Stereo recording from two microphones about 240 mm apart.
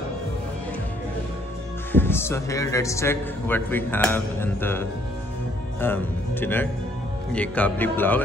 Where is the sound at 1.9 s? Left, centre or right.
Centre.